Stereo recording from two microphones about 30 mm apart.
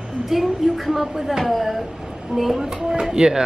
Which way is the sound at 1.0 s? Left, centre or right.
Centre.